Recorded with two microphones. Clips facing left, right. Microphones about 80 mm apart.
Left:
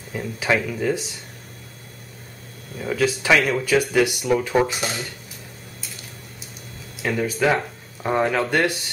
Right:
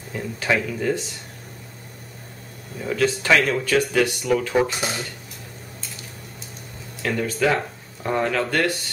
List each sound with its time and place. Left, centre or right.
0.1 s speech: centre
2.8 s speech: centre
4.6 s speech: centre
7.0 s speech: centre